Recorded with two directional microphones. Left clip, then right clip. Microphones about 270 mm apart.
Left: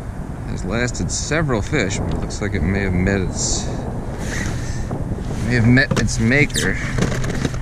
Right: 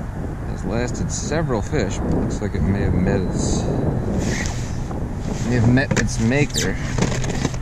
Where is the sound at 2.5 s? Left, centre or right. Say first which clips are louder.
Left 2 dB; left.